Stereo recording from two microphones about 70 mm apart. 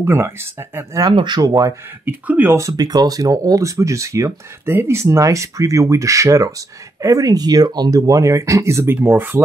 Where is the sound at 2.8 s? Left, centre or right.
Right.